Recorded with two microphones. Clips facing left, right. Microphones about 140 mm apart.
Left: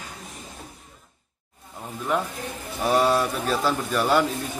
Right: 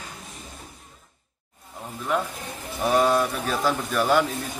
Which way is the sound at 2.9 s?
5° left (ahead or behind).